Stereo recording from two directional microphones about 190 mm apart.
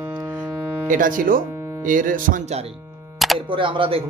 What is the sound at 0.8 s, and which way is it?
Speech, 45° right (ahead or behind).